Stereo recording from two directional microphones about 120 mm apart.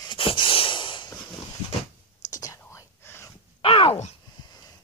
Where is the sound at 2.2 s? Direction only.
30° left (ahead or behind).